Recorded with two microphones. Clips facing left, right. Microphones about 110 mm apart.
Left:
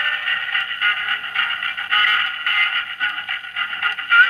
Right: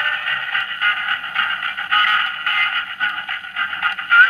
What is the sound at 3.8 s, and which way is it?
Radio, 25° right (ahead or behind).